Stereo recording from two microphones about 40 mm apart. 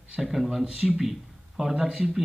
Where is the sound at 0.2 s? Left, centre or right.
Centre.